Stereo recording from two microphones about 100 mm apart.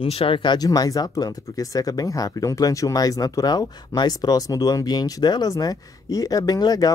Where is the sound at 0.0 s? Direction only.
65° left (ahead or behind).